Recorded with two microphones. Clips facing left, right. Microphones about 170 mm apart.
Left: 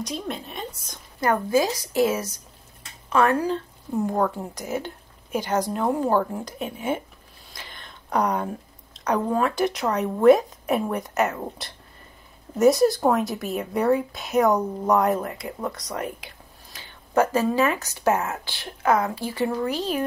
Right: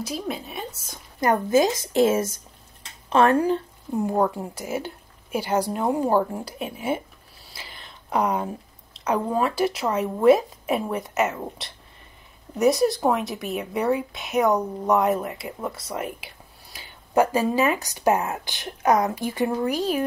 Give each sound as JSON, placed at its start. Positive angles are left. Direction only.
{"t": 0.0, "sound": "a woman's voice", "side_deg": -5}
{"t": 1.2, "sound": "speech", "side_deg": -20}
{"t": 4.0, "sound": "a woman's voice", "side_deg": -10}
{"t": 7.5, "sound": "a sound", "side_deg": -5}
{"t": 8.9, "sound": "a woman's voice", "side_deg": -5}